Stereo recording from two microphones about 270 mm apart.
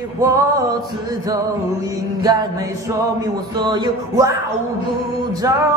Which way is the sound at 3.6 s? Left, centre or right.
Centre.